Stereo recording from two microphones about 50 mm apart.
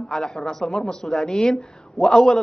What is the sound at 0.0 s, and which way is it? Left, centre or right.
A woman's voice, centre.